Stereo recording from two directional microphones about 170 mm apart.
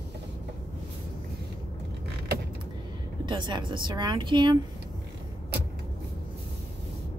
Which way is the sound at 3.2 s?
25° right (ahead or behind).